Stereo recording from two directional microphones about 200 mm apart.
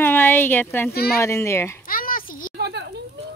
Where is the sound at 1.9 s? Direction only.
45° left (ahead or behind).